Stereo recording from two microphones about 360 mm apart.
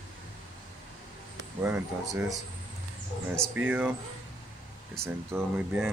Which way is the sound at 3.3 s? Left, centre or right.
Centre.